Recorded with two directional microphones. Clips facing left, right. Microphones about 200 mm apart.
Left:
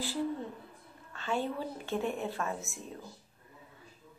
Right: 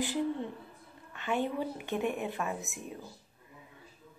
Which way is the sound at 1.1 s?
15° right (ahead or behind).